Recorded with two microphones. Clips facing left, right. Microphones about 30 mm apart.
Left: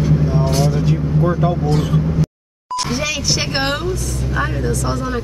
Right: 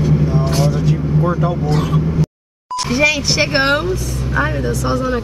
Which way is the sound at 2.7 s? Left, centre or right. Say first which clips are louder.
Right 2 dB; centre.